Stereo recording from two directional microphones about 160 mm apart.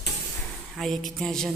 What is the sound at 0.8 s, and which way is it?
Speech, centre (ahead or behind).